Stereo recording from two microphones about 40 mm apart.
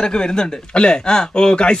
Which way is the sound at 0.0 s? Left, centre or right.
Left.